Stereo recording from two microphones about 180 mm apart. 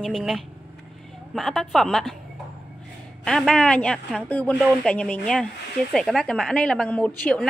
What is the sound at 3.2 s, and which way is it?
A man's voice, centre (ahead or behind).